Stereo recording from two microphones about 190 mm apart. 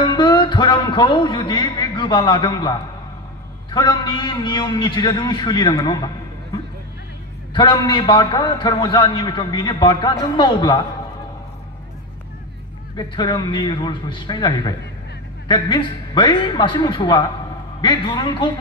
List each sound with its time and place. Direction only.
0.0 s a man's voice: 25° left (ahead or behind)
7.5 s a man's voice: 25° left (ahead or behind)
12.9 s a man's voice: 20° left (ahead or behind)